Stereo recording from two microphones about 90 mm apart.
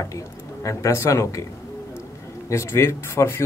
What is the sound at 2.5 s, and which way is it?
Speech, 30° left (ahead or behind).